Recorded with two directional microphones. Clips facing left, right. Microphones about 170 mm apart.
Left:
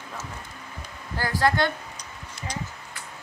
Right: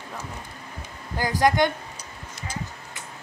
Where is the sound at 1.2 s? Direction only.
15° right (ahead or behind).